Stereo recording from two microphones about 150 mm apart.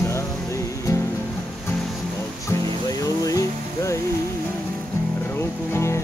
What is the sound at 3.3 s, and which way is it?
Music, 20° left (ahead or behind).